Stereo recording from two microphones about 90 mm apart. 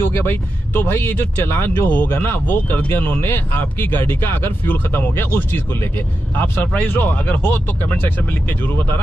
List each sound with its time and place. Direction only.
0.0 s speech: 25° left (ahead or behind)